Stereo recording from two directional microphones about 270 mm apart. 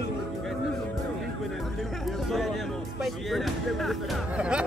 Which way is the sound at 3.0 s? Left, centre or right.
Centre.